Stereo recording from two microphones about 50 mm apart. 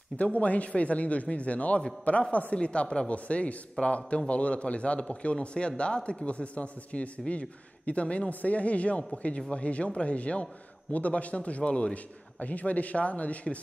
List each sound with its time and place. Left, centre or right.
0.2 s speech: left